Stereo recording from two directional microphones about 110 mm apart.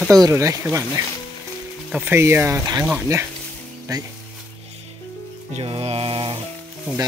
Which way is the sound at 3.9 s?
35° right (ahead or behind).